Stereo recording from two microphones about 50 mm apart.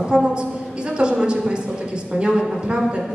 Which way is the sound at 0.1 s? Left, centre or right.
Centre.